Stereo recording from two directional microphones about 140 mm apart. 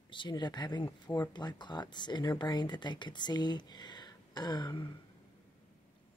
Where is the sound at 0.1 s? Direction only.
35° left (ahead or behind).